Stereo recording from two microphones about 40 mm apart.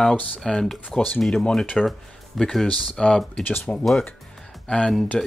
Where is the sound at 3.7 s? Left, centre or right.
Left.